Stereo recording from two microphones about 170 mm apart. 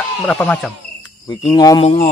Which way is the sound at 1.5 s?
25° left (ahead or behind).